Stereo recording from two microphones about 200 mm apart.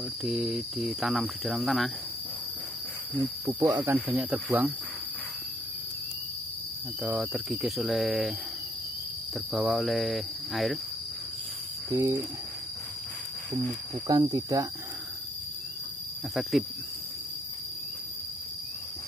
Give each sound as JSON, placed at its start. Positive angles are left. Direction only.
{"t": 0.2, "sound": "speech", "side_deg": -5}
{"t": 3.4, "sound": "speech", "side_deg": -10}
{"t": 7.0, "sound": "speech", "side_deg": 0}
{"t": 9.5, "sound": "speech", "side_deg": 0}
{"t": 11.9, "sound": "speech", "side_deg": -15}
{"t": 14.0, "sound": "speech", "side_deg": -20}